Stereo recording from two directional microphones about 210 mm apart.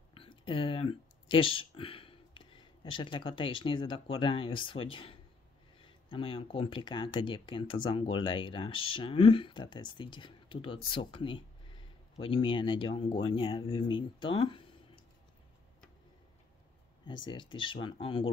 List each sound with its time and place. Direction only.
0.1 s a sound: 25° left (ahead or behind)
1.3 s speech: 25° left (ahead or behind)
17.3 s speech: 25° left (ahead or behind)